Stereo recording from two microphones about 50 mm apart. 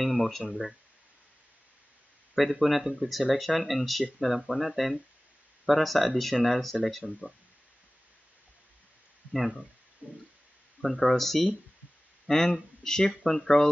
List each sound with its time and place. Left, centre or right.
0.0 s speech: centre
2.6 s speech: centre
9.3 s speech: centre
10.0 s a sound: right
10.8 s speech: centre